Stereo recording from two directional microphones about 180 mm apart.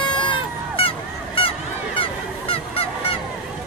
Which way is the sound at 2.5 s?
30° left (ahead or behind).